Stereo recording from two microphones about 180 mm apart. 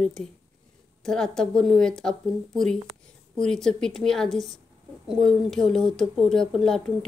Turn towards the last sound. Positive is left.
turn(degrees=0)  # may be behind; listen again after turning